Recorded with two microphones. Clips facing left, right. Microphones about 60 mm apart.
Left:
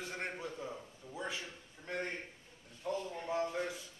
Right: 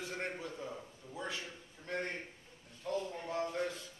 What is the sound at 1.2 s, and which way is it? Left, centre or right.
A man's voice, centre.